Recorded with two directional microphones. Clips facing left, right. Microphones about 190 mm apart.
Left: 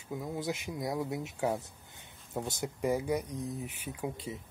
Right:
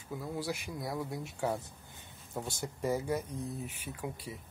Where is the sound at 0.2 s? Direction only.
20° left (ahead or behind).